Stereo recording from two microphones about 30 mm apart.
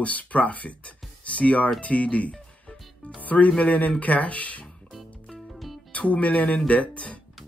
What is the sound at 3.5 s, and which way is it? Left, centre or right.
Speech, left.